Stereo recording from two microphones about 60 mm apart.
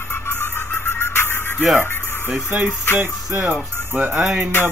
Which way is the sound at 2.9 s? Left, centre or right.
Right.